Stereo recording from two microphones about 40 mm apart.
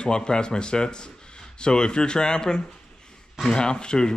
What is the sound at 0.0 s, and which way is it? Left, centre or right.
Speech, left.